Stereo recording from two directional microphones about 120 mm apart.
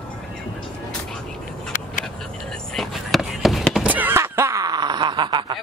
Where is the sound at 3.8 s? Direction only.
15° right (ahead or behind); by 5.6 s 40° right (ahead or behind).